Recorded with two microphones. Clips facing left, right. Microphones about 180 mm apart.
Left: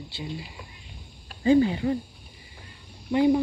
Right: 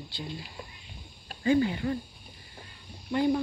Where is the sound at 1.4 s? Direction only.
25° left (ahead or behind).